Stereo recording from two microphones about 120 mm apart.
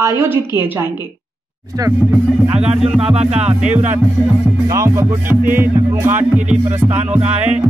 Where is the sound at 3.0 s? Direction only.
60° right (ahead or behind).